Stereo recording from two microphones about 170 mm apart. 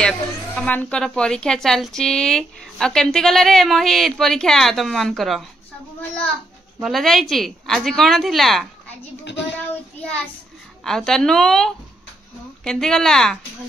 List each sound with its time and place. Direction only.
0.6 s a woman's voice: 10° left (ahead or behind)
6.8 s a woman's voice: centre (ahead or behind)
9.2 s speech: 90° left
9.9 s child singing: 5° left (ahead or behind)
10.8 s a woman's voice: 5° left (ahead or behind)